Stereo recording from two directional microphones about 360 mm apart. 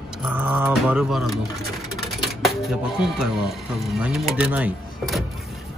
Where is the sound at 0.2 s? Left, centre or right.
Centre.